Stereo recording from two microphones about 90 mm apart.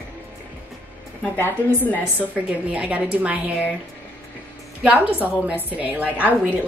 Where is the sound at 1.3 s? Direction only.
20° left (ahead or behind).